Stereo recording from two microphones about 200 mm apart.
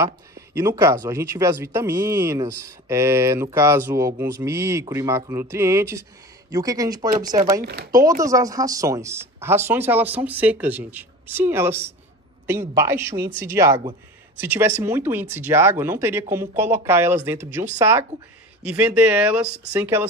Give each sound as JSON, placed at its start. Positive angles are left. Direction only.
{"t": 0.6, "sound": "speech", "side_deg": -15}
{"t": 7.6, "sound": "speech", "side_deg": -55}
{"t": 8.2, "sound": "speech", "side_deg": -15}